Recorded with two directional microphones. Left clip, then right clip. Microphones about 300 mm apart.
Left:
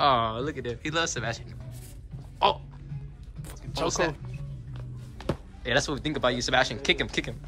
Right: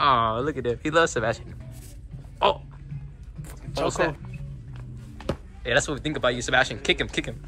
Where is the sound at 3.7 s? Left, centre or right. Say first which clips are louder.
Right 3 dB; centre.